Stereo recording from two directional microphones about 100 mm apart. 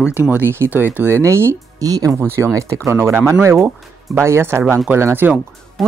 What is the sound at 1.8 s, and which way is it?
Speech, 35° right (ahead or behind).